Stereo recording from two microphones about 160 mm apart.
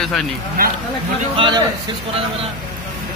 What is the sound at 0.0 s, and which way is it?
Speech, 5° left (ahead or behind).